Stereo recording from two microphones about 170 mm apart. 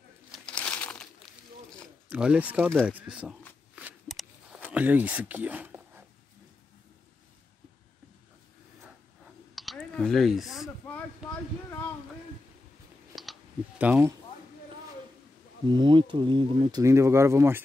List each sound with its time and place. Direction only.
0.3 s crumpling: 5° left (ahead or behind)
2.0 s speech: 5° right (ahead or behind)
3.7 s a sound: 5° right (ahead or behind)
9.6 s speech: centre (ahead or behind)
13.1 s clicking: centre (ahead or behind)
15.7 s speech: 25° right (ahead or behind)